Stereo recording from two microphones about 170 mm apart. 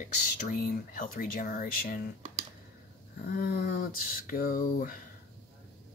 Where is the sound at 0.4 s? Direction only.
50° left (ahead or behind).